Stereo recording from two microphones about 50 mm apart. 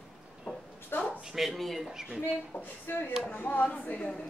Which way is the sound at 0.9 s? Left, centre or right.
Left.